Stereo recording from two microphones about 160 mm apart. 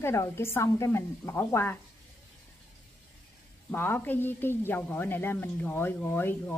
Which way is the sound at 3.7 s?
15° left (ahead or behind).